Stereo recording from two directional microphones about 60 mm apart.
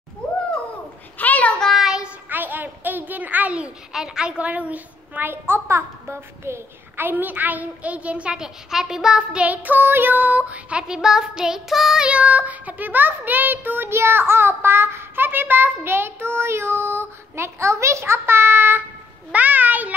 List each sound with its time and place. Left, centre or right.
1.1 s child singing: left
1.6 s child singing: centre
2.2 s a sound: right
3.9 s a woman's voice: centre
8.4 s a sound: centre
9.5 s a woman's voice: right; by 12.1 s centre
12.1 s a child's voice: right